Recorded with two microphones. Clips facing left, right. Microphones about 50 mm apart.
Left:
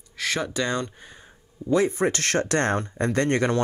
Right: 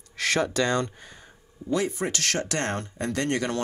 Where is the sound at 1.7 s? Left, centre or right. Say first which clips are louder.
Left 5 dB; left.